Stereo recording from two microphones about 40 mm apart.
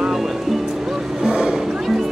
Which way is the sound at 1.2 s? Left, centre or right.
Right.